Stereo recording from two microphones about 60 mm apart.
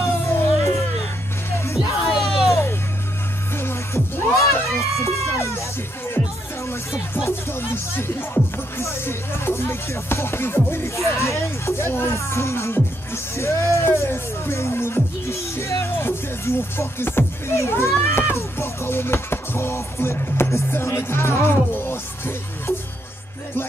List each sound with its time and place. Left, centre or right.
0.0 s music: left
2.0 s music: centre
3.5 s music: left
7.2 s speech: left